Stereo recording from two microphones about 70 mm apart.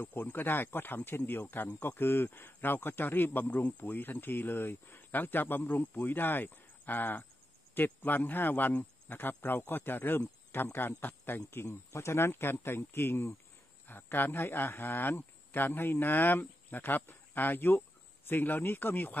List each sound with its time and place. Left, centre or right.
0.0 s speech: left
11.6 s speech: left